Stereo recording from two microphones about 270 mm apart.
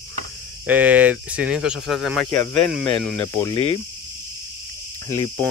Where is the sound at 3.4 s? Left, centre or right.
Centre.